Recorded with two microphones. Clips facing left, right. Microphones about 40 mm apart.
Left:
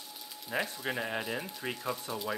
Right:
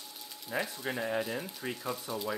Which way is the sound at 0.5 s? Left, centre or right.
Left.